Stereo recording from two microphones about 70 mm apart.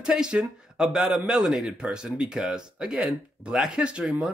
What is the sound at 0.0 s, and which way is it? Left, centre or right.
A man's voice, centre.